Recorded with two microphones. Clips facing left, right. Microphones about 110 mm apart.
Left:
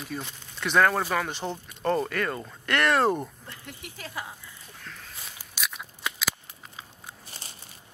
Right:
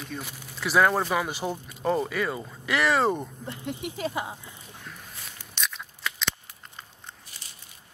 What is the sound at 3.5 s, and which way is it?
Speech, 20° right (ahead or behind).